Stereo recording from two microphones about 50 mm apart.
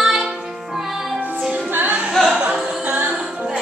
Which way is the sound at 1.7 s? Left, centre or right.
Right.